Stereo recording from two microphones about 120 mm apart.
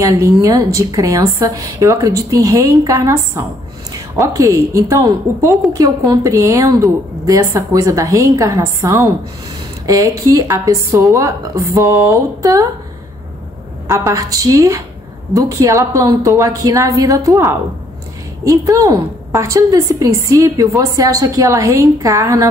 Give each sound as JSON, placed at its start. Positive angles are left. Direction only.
{"t": 0.0, "sound": "a woman's voice", "side_deg": -25}
{"t": 14.0, "sound": "a woman's voice", "side_deg": -30}